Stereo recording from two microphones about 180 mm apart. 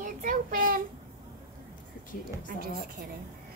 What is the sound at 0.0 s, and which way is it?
Child singing, 50° right (ahead or behind).